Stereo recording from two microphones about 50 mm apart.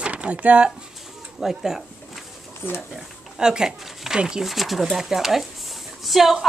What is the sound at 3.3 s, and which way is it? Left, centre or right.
Speech, centre.